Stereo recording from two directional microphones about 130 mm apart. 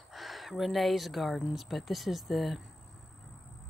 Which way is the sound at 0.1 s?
Centre (ahead or behind).